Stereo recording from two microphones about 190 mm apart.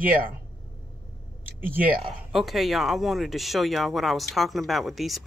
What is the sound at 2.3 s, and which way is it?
Speech, centre (ahead or behind).